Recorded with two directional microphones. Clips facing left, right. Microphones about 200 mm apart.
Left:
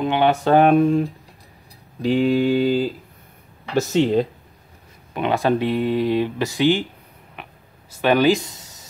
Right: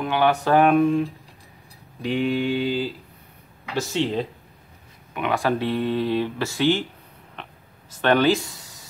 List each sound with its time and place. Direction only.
0.0 s speech: 25° left (ahead or behind)
2.0 s mantra: 35° left (ahead or behind)
3.7 s speech: 45° left (ahead or behind)
5.1 s speech: 25° left (ahead or behind)
7.4 s a sound: 10° left (ahead or behind)
7.9 s speech: 10° left (ahead or behind)